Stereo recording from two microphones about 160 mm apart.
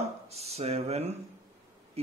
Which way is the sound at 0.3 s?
40° right (ahead or behind).